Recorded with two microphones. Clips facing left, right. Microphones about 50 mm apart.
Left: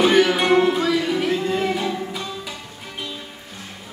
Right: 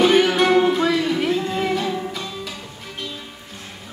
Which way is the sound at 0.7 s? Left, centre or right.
Centre.